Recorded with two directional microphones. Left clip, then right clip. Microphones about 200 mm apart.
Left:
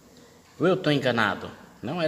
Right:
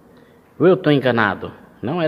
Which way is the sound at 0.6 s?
25° right (ahead or behind).